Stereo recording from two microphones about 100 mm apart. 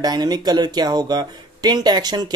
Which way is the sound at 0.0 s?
45° right (ahead or behind).